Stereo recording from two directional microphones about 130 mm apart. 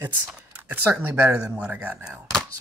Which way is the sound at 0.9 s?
15° right (ahead or behind).